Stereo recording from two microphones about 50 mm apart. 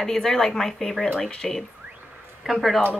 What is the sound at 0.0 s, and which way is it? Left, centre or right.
Speech, centre.